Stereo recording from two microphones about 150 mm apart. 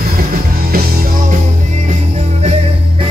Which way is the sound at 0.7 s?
70° right (ahead or behind).